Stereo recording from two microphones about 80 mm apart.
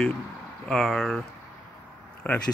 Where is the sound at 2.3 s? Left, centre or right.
Left.